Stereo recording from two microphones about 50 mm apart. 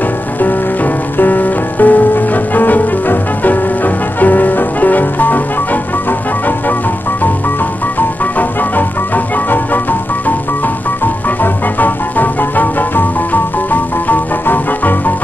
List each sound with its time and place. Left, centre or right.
1.1 s music: left
8.4 s music: left
11.2 s music: left